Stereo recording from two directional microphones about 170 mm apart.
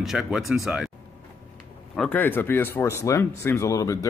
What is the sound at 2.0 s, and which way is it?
Speech, 10° left (ahead or behind).